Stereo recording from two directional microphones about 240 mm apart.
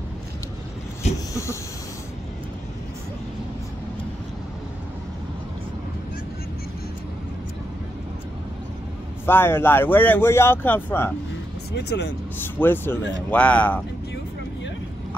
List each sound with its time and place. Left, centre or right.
1.3 s a sound: centre
9.2 s speech: centre
11.7 s speech: left
12.5 s speech: centre